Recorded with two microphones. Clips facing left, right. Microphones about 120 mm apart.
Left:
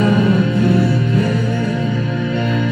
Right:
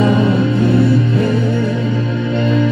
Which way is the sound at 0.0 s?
25° right (ahead or behind).